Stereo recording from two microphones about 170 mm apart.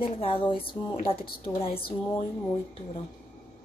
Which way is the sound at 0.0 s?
30° left (ahead or behind).